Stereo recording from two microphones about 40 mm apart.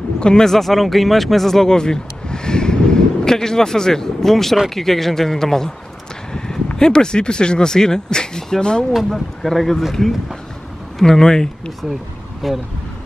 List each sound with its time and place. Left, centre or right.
0.2 s speech: centre
0.5 s a man's voice: centre
6.3 s a sound: centre
6.8 s speech: centre
8.9 s a man's voice: centre
11.0 s a man's voice: centre
12.4 s speech: centre